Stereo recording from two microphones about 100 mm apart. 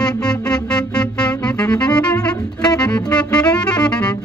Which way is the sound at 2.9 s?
10° left (ahead or behind).